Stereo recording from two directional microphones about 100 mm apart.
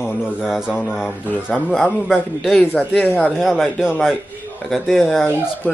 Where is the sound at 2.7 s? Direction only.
20° left (ahead or behind).